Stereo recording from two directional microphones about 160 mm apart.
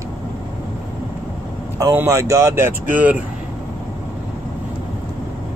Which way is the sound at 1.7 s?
15° right (ahead or behind).